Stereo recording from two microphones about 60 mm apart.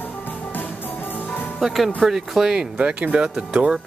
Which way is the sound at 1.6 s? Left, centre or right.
Centre.